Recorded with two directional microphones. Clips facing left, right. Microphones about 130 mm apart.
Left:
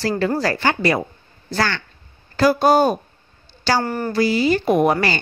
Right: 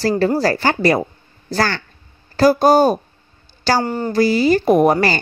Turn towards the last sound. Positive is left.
turn(degrees=-40)  # may be behind; listen again after turning